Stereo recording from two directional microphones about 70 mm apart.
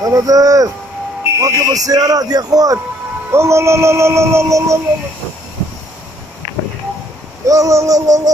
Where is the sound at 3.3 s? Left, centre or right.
Right.